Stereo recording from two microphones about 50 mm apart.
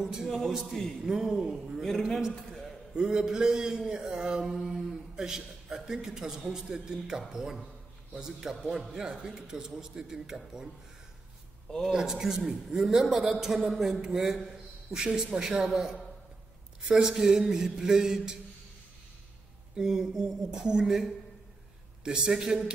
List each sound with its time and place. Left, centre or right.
0.0 s mantra: centre
1.8 s a man's voice: centre
3.0 s mantra: centre
12.0 s mantra: centre
13.0 s a man's voice: centre
14.1 s a sound: centre
15.0 s mantra: centre
16.9 s mantra: centre
19.8 s mantra: centre